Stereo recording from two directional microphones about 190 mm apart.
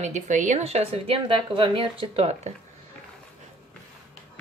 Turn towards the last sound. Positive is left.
turn(degrees=-30)  # may be behind; listen again after turning